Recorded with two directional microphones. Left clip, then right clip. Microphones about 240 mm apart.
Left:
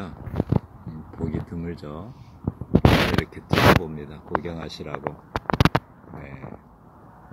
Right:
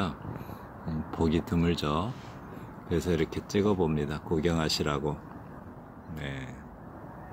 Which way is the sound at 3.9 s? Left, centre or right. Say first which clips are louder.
Right 5 dB; right.